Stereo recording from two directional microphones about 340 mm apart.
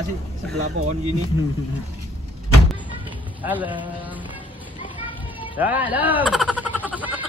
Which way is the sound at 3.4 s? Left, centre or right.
Centre.